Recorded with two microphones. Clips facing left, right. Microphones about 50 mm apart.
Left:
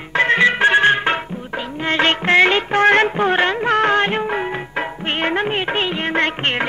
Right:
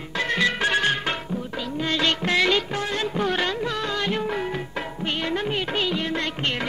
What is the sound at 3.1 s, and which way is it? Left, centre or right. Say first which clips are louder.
Music: left 7 dB; left.